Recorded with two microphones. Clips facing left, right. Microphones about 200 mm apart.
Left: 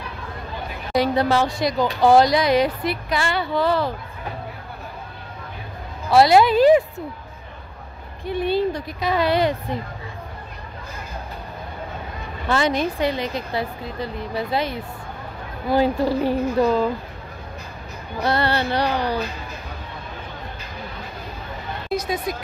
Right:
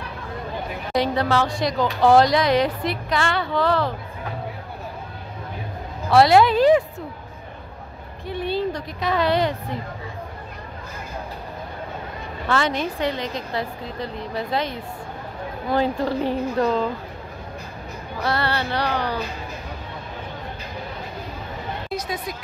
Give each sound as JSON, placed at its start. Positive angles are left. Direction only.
{"t": 0.9, "sound": "speech", "side_deg": 10}
{"t": 6.0, "sound": "speech", "side_deg": 0}
{"t": 8.3, "sound": "a woman's voice", "side_deg": 10}
{"t": 12.4, "sound": "a woman's voice", "side_deg": 15}
{"t": 18.2, "sound": "a woman's voice", "side_deg": 20}